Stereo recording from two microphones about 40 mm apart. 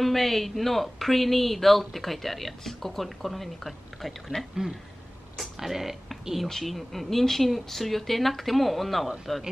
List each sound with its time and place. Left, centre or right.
0.0 s speech: centre
4.3 s speech: left
5.4 s speech: centre
6.4 s speech: centre